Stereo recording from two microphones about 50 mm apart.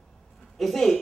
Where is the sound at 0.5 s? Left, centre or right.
Centre.